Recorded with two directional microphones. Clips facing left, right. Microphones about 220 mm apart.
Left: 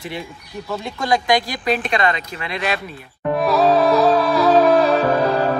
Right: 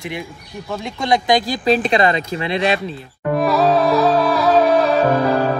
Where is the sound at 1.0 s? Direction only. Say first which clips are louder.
Right 2 dB; 20° right (ahead or behind).